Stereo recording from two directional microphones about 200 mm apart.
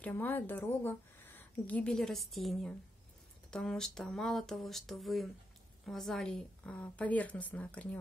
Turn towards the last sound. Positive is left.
turn(degrees=5)  # may be behind; listen again after turning